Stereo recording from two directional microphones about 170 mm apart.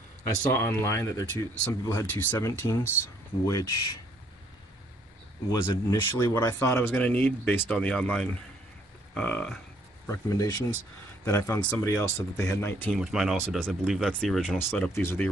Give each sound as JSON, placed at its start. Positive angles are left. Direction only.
{"t": 0.4, "sound": "speech", "side_deg": 15}
{"t": 5.5, "sound": "speech", "side_deg": 20}
{"t": 10.0, "sound": "speech", "side_deg": 15}
{"t": 12.9, "sound": "speech", "side_deg": -5}
{"t": 15.0, "sound": "speech", "side_deg": 15}